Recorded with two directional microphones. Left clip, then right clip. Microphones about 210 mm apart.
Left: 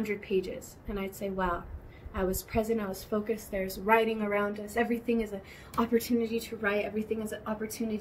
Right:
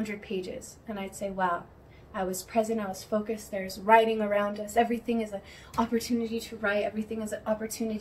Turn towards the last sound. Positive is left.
turn(degrees=0)  # may be behind; listen again after turning